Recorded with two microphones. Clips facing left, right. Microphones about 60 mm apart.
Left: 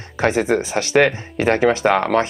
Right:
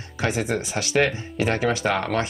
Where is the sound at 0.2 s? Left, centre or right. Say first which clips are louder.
Left 7 dB; left.